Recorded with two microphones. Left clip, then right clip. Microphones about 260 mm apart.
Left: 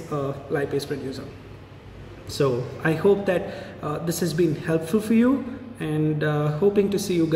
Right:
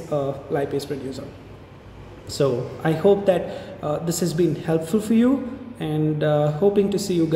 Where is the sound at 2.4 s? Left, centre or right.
Centre.